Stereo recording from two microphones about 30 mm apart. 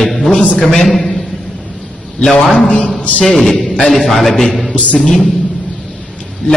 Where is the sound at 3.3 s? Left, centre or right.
Centre.